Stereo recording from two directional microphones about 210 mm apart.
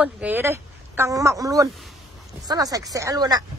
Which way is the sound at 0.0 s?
10° right (ahead or behind).